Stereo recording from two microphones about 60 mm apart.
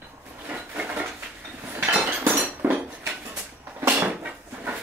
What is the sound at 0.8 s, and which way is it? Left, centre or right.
Dishes, right.